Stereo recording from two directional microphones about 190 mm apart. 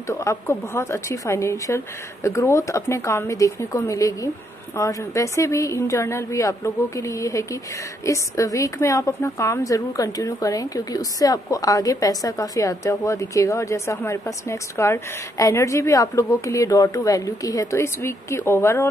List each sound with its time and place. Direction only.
0.0 s a woman's voice: 15° left (ahead or behind)